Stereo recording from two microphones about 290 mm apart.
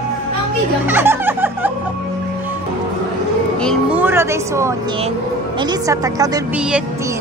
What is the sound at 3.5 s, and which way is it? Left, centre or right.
A woman's voice, centre.